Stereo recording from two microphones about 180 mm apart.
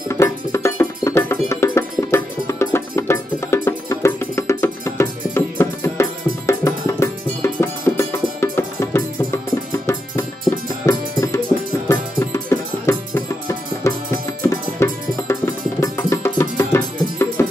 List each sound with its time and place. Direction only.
0.1 s music: 15° left (ahead or behind)
10.9 s tabla: 20° left (ahead or behind)
11.9 s music: 15° left (ahead or behind)